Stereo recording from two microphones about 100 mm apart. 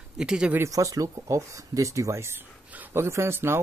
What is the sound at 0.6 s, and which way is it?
Speech, 35° right (ahead or behind).